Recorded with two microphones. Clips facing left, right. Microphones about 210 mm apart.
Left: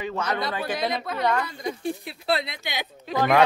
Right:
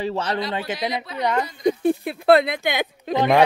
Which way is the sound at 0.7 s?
50° left (ahead or behind).